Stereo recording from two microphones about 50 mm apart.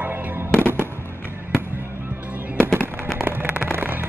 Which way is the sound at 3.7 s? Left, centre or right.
Right.